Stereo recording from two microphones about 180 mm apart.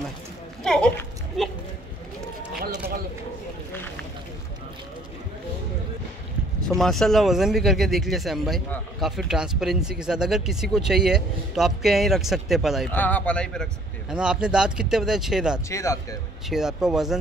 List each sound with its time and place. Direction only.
0.7 s a sound: 5° left (ahead or behind)
6.6 s a man's voice: centre (ahead or behind)
15.7 s speech: 15° left (ahead or behind)
16.4 s a man's voice: centre (ahead or behind)